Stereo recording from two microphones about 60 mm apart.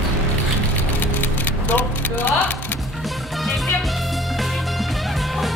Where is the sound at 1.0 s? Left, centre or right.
Left.